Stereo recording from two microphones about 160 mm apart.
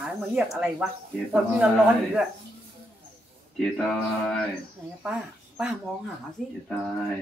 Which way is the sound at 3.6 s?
5° left (ahead or behind).